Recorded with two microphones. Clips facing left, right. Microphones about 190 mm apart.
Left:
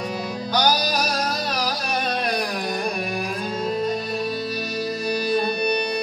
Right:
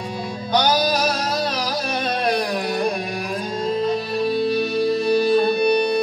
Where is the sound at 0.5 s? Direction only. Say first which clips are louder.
Right 4 dB; 25° right (ahead or behind).